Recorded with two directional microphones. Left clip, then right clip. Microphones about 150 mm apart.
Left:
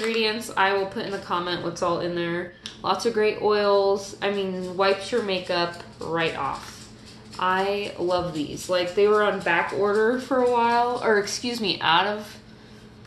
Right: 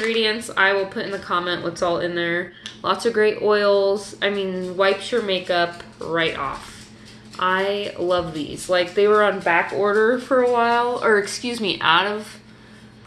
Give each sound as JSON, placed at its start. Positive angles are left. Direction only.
{"t": 0.1, "sound": "speech", "side_deg": 10}
{"t": 7.3, "sound": "speech", "side_deg": 5}